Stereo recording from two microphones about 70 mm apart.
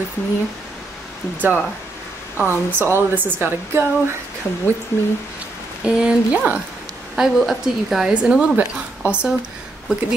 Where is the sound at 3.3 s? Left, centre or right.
Right.